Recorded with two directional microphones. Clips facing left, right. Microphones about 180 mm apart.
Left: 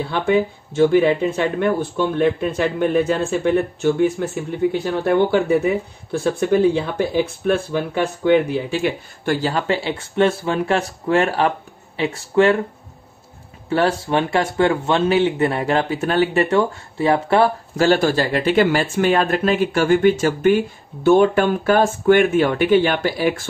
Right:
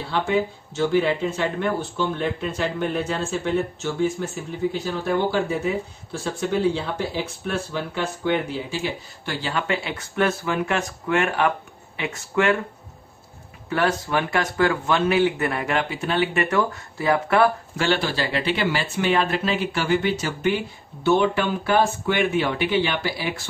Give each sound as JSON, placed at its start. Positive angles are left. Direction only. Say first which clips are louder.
{"t": 0.0, "sound": "speech", "louder": "left 5 dB", "side_deg": 55}
{"t": 13.7, "sound": "speech", "louder": "left 4 dB", "side_deg": 30}
{"t": 16.3, "sound": "speech", "louder": "left 5 dB", "side_deg": 30}
{"t": 17.8, "sound": "speech", "louder": "left 7 dB", "side_deg": 45}